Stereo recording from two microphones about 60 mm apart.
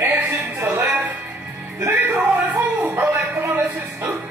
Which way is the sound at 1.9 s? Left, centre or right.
Right.